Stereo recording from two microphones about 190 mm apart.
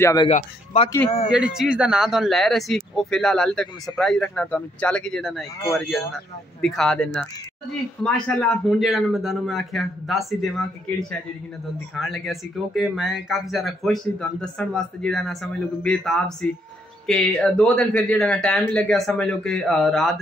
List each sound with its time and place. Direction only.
0.0 s speech: 20° left (ahead or behind)
0.3 s speech: 40° left (ahead or behind)
1.3 s speech: 5° right (ahead or behind)